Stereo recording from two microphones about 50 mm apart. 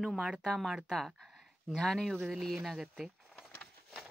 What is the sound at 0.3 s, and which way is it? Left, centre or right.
Speech, centre.